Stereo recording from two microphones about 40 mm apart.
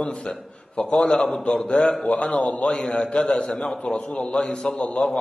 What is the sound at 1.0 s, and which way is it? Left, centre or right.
A man's voice, centre.